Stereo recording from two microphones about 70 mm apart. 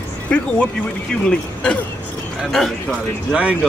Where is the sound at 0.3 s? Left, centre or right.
Centre.